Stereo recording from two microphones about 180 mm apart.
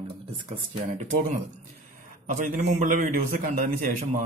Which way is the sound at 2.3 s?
45° right (ahead or behind).